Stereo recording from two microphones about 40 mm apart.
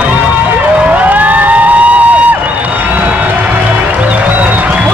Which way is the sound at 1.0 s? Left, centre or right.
Right.